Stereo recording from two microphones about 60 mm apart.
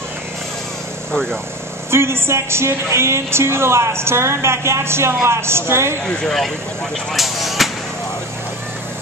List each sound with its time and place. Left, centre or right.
1.9 s speech: right
6.2 s speech: centre
7.2 s a sound: centre